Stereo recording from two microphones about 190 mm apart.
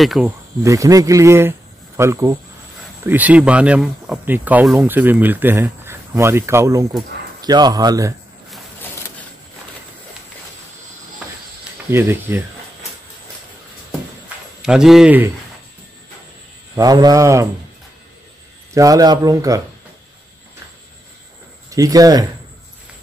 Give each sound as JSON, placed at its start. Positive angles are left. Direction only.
{"t": 0.0, "sound": "speech", "side_deg": 0}
{"t": 0.7, "sound": "speech", "side_deg": -15}
{"t": 11.9, "sound": "speech", "side_deg": -10}
{"t": 14.6, "sound": "speech", "side_deg": 0}
{"t": 16.7, "sound": "speech", "side_deg": -20}
{"t": 18.7, "sound": "speech", "side_deg": -15}
{"t": 21.6, "sound": "speech", "side_deg": -20}